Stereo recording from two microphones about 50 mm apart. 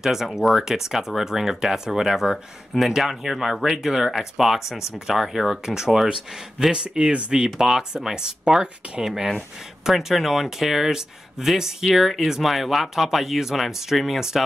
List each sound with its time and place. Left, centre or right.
0.0 s speech: centre
6.7 s speech: centre